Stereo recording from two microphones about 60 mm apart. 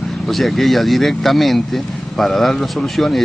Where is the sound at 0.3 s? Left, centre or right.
Centre.